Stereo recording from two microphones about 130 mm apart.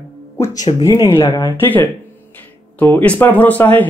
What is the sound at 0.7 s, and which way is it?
Speech, 30° left (ahead or behind).